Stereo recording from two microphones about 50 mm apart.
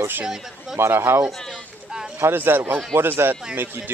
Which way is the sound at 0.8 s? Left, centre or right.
Right.